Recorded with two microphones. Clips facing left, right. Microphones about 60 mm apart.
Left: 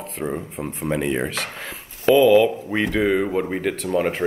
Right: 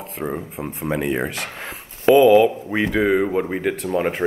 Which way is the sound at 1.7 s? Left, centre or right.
Centre.